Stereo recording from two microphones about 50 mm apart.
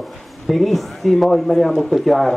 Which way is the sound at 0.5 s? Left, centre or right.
Centre.